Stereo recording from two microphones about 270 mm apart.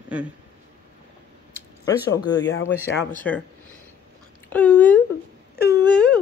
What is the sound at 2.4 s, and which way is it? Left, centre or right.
Speech, left.